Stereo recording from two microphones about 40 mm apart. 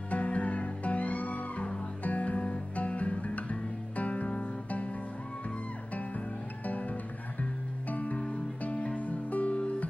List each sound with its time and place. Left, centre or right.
0.1 s music: left
6.6 s music: left
7.9 s music: left